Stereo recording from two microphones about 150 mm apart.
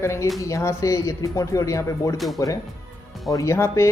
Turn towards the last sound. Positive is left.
turn(degrees=20)  # may be behind; listen again after turning